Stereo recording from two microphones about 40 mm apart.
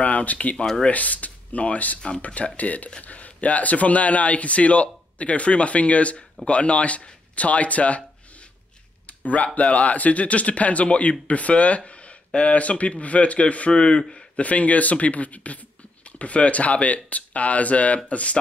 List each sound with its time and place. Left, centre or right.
0.0 s speech: left
2.0 s speech: left
2.2 s speech: left
9.2 s speech: left
14.4 s speech: left